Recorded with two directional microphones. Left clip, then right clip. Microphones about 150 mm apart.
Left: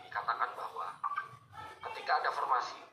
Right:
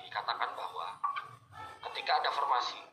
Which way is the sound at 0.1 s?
15° right (ahead or behind).